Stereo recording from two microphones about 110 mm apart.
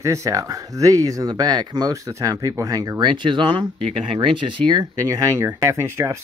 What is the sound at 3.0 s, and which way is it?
Speech, 45° right (ahead or behind).